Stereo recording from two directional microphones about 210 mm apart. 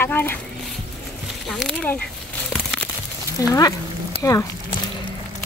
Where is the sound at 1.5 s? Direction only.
Centre (ahead or behind).